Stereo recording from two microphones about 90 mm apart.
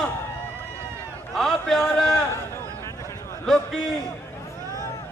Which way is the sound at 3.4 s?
5° left (ahead or behind).